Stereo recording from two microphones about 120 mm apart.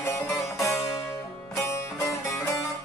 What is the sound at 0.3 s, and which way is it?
Music, 25° left (ahead or behind).